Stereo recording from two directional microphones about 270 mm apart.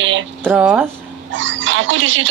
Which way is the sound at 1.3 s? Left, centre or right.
Right.